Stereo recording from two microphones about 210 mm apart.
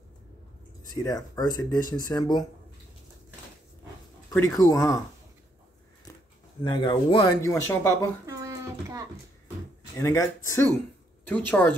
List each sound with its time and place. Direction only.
0.9 s speech: 15° left (ahead or behind)
4.3 s speech: 15° left (ahead or behind)
6.6 s speech: 20° left (ahead or behind)
8.3 s a sound: 15° right (ahead or behind)
9.9 s speech: 15° left (ahead or behind)